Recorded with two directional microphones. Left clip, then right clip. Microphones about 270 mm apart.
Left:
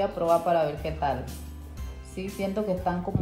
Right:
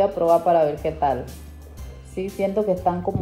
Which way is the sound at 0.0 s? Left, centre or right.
Left.